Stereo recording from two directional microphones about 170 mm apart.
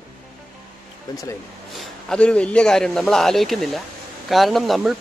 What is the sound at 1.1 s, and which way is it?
Speech, 20° left (ahead or behind).